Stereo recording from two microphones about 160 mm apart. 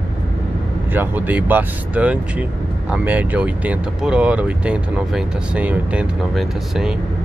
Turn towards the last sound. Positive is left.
turn(degrees=-5)  # may be behind; listen again after turning